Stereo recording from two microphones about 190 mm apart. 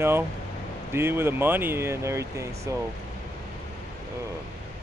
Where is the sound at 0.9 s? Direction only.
15° right (ahead or behind).